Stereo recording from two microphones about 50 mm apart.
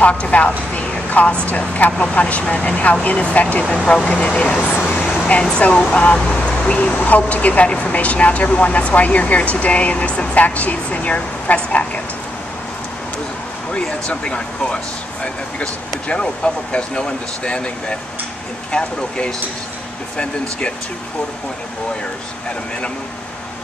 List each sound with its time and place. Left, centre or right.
0.0 s speech: left
3.7 s speech: centre
13.7 s speech: centre